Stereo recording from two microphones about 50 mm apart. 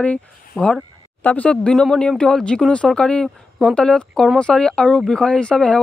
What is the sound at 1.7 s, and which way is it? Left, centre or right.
Speech, centre.